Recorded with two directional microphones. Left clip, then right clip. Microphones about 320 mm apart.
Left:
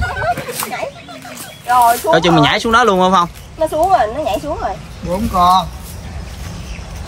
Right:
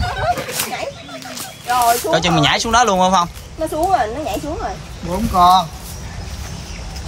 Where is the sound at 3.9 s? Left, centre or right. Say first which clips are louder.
Left 4 dB; centre.